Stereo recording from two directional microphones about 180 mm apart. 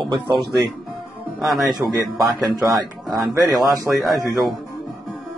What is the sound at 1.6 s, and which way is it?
A man's voice, 20° right (ahead or behind).